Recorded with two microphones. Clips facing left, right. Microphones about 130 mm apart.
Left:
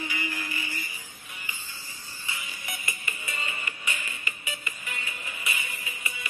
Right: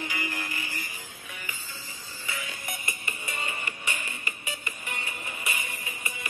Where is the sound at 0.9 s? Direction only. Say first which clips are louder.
Right 3 dB; 65° right (ahead or behind).